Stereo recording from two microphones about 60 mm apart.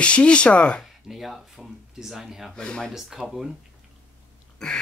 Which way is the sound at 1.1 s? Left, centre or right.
Centre.